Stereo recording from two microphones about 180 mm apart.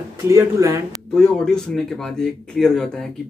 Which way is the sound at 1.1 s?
5° left (ahead or behind).